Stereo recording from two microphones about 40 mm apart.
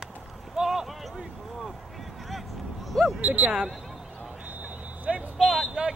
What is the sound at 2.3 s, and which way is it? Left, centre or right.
Vehicle, centre.